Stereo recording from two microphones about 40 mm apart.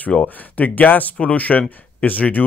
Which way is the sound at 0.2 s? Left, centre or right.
Left.